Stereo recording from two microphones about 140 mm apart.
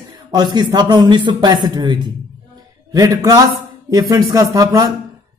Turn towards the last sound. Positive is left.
turn(degrees=-25)  # may be behind; listen again after turning